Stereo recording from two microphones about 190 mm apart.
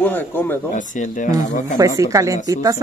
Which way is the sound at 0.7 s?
40° left (ahead or behind).